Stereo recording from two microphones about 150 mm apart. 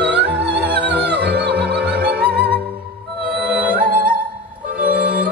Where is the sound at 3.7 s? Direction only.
75° right (ahead or behind).